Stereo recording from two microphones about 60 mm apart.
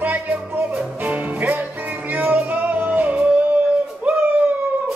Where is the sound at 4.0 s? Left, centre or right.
Right.